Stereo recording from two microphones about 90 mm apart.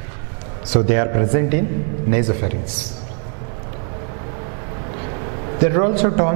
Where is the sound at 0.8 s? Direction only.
15° right (ahead or behind).